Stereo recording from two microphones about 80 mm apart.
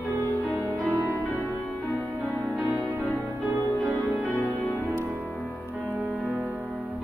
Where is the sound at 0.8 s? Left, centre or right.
Right.